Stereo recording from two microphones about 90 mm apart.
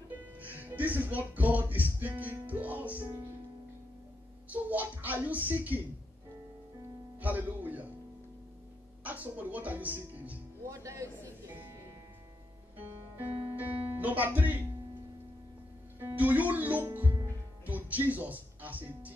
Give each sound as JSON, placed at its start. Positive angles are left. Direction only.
{"t": 0.4, "sound": "music", "side_deg": -20}
{"t": 4.5, "sound": "a woman's voice", "side_deg": -20}
{"t": 7.2, "sound": "a woman's voice", "side_deg": -20}
{"t": 9.0, "sound": "a woman's voice", "side_deg": -20}
{"t": 10.7, "sound": "a man's voice", "side_deg": -35}
{"t": 12.7, "sound": "speech", "side_deg": -20}
{"t": 16.2, "sound": "a woman's voice", "side_deg": -20}